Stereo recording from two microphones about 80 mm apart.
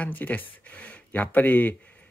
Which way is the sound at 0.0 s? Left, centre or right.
Left.